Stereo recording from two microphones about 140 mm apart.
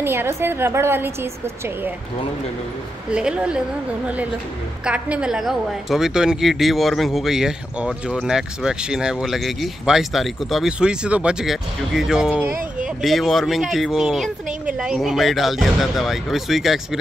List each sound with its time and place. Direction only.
0.0 s a woman's voice: 15° right (ahead or behind)
3.1 s a woman's voice: 5° right (ahead or behind)
4.8 s speech: 10° right (ahead or behind)